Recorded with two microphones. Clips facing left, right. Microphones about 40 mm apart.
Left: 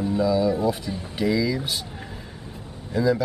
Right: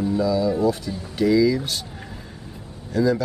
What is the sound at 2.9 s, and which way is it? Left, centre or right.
Speech, centre.